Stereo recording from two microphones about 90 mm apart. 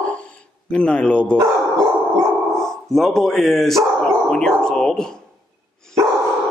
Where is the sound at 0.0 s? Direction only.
15° left (ahead or behind).